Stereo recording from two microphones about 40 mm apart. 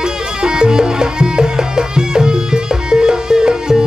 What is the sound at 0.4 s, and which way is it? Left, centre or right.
Music, centre.